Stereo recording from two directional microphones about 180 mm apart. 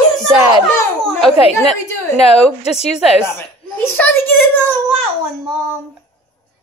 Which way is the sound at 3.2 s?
15° left (ahead or behind).